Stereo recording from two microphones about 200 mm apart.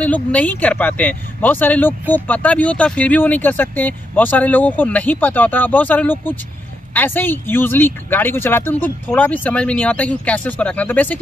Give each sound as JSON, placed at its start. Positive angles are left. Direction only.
{"t": 0.0, "sound": "speech", "side_deg": 5}